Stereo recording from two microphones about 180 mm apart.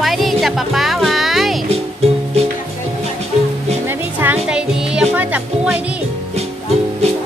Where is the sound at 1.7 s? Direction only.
35° right (ahead or behind).